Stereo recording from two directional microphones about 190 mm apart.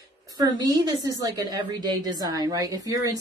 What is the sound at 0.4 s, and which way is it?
A woman's voice, 20° right (ahead or behind).